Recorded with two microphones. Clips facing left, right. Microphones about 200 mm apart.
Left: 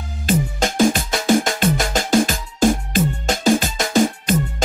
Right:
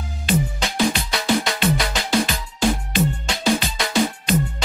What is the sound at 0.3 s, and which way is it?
Music, 45° left (ahead or behind).